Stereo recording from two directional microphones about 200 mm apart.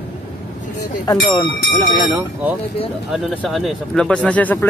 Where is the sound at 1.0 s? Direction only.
20° left (ahead or behind).